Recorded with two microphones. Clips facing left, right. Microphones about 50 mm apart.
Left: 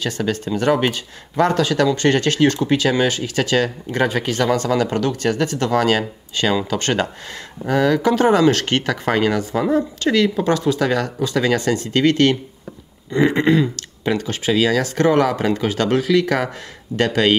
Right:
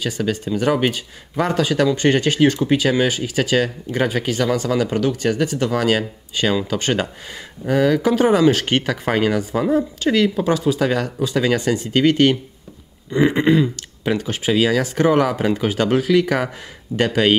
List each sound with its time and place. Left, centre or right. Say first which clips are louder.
0.0 s speech: even; centre